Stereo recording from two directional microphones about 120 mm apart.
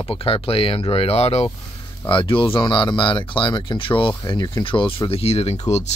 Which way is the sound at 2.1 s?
45° left (ahead or behind).